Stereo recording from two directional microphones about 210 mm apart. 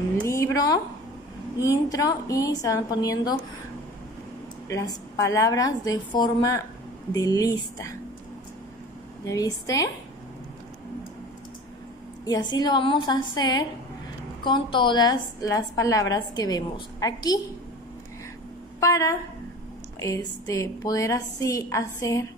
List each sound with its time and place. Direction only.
1.7 s a woman's voice: 15° left (ahead or behind)
4.6 s a woman's voice: 15° left (ahead or behind)
9.2 s a woman's voice: 15° left (ahead or behind)
12.3 s a woman's voice: 20° left (ahead or behind)
18.8 s a woman's voice: 15° left (ahead or behind)